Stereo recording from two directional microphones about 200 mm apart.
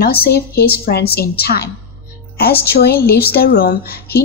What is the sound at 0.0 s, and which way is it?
A woman's voice, 50° left (ahead or behind).